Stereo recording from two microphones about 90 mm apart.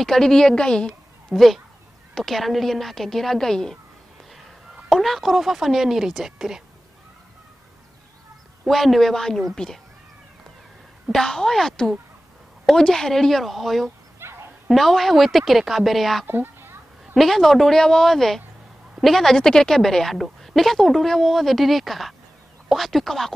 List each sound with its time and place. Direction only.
0.0 s a woman's voice: 5° left (ahead or behind)
4.8 s a woman's voice: centre (ahead or behind)
8.6 s a woman's voice: centre (ahead or behind)
11.1 s a woman's voice: 5° left (ahead or behind)
14.2 s dog: 25° right (ahead or behind)
14.7 s a woman's voice: centre (ahead or behind)
16.3 s a sound: 25° right (ahead or behind)
17.0 s a woman's voice: centre (ahead or behind)